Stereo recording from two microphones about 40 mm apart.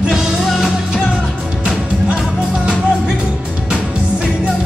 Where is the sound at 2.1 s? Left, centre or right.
Right.